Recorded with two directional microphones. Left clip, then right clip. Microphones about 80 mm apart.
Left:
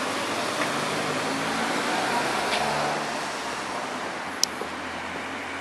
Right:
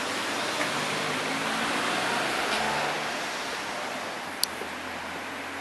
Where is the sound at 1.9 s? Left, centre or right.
Right.